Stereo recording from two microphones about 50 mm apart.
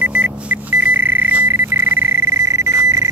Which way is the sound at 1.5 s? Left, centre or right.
Right.